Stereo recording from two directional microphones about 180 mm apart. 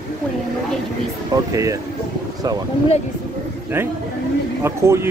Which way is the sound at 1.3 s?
20° right (ahead or behind).